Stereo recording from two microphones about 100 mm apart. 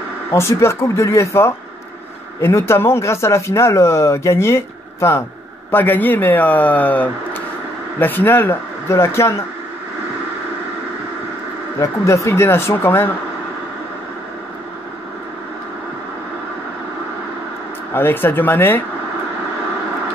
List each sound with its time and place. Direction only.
0.3 s speech: 30° left (ahead or behind)
11.8 s speech: 30° left (ahead or behind)
17.9 s speech: 20° left (ahead or behind)